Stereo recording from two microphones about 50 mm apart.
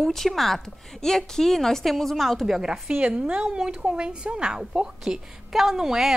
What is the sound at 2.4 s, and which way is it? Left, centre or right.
Speech, centre.